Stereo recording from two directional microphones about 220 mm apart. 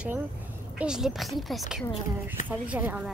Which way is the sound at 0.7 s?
5° right (ahead or behind).